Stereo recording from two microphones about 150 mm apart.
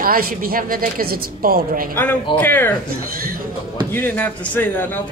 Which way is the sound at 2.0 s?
10° left (ahead or behind).